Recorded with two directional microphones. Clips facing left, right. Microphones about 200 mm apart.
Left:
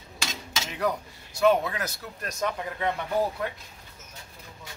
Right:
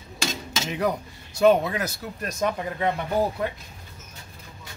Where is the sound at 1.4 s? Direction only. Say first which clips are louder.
Right 4 dB; 25° right (ahead or behind).